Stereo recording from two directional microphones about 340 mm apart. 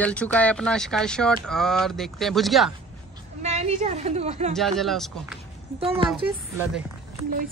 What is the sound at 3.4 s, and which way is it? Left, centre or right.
A woman's voice, centre.